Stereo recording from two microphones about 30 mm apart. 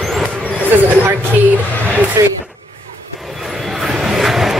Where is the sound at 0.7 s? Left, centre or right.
Right.